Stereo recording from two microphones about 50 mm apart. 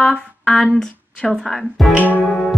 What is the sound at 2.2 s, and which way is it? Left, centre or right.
Music, left.